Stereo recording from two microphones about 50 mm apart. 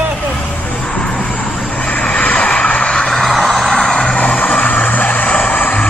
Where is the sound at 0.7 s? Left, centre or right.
Centre.